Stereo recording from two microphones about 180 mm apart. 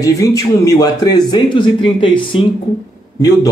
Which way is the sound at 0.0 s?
20° left (ahead or behind).